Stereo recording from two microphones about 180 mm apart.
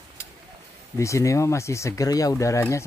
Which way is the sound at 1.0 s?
15° left (ahead or behind).